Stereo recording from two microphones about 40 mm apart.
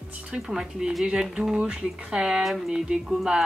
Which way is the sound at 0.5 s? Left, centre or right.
Centre.